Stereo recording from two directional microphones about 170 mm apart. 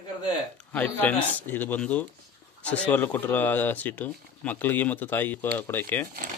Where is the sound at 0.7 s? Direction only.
10° left (ahead or behind).